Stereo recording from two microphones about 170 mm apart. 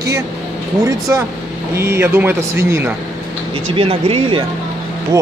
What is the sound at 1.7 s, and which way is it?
Speech, 15° right (ahead or behind).